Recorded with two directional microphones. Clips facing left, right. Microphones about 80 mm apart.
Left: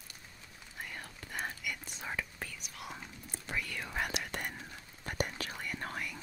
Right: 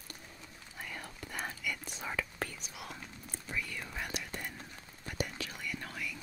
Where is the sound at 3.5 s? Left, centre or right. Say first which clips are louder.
Left 1 dB; left.